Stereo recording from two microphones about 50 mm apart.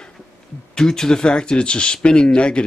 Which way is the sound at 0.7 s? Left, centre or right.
Centre.